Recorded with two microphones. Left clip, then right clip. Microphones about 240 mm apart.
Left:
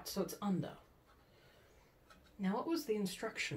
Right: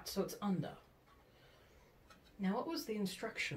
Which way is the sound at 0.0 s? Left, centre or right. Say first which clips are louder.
Even; left.